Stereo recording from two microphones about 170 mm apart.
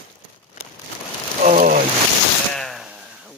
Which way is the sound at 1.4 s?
50° right (ahead or behind).